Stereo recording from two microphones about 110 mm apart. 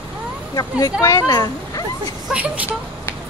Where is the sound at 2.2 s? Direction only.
10° right (ahead or behind).